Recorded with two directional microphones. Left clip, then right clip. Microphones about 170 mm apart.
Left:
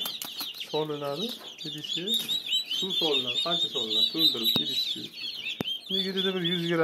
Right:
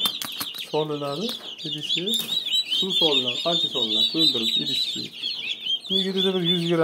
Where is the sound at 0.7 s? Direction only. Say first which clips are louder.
Right 4 dB; centre (ahead or behind).